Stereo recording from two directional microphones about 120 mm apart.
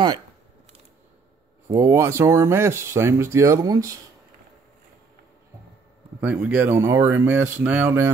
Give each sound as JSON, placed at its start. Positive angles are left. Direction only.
{"t": 1.7, "sound": "speech", "side_deg": -25}
{"t": 6.2, "sound": "speech", "side_deg": -15}